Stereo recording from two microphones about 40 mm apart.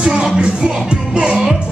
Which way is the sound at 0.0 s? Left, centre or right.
Right.